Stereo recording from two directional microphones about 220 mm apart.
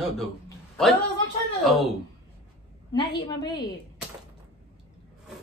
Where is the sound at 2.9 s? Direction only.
20° left (ahead or behind).